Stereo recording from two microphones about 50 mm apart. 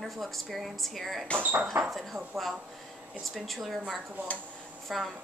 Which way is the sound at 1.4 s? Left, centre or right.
Right.